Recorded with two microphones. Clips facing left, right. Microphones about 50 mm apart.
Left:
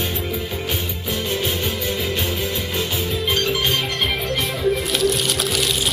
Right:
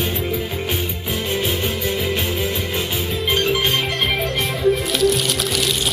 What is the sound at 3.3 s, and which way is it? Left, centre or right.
Music, centre.